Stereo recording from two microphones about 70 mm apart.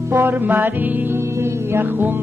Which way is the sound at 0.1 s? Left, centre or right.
Right.